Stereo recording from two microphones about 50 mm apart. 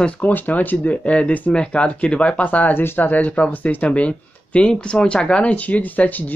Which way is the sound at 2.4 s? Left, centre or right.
Left.